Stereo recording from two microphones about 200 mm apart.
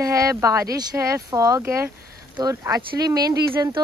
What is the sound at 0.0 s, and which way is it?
Speech, 15° right (ahead or behind).